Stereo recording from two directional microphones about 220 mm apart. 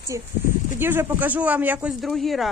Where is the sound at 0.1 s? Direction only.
15° right (ahead or behind).